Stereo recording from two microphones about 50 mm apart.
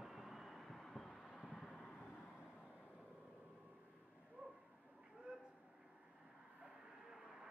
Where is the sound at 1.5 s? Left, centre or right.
Centre.